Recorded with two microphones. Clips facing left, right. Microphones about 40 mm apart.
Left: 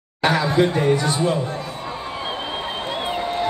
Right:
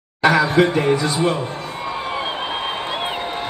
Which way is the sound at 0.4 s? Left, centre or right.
Right.